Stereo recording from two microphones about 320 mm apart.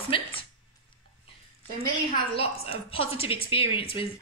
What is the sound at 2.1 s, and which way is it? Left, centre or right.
Speech, centre.